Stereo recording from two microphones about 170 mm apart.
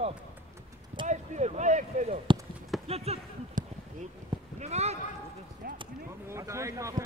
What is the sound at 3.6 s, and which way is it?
Basketball bounce, 50° right (ahead or behind).